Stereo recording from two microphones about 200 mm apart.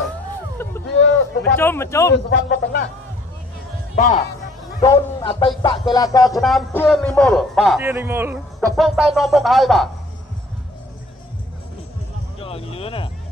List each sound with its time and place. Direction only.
0.8 s a sound: 65° left (ahead or behind)
1.6 s speech: 10° left (ahead or behind)
2.2 s speech: 55° left (ahead or behind)
3.9 s a man's voice: 40° left (ahead or behind)
4.7 s a man's voice: 20° left (ahead or behind)
6.3 s a man's voice: centre (ahead or behind)
8.5 s music: centre (ahead or behind)
9.1 s a man's voice: centre (ahead or behind)
12.4 s a sound: 30° left (ahead or behind)